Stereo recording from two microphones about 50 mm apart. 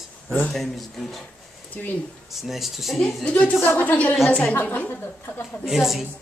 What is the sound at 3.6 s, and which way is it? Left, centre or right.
A woman's voice, left.